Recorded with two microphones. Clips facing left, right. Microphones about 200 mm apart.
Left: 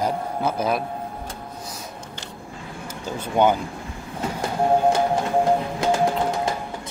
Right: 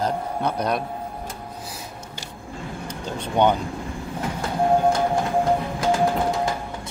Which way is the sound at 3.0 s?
5° left (ahead or behind).